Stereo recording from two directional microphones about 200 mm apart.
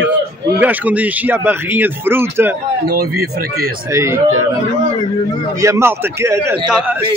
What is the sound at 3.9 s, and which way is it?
Speech, 15° right (ahead or behind).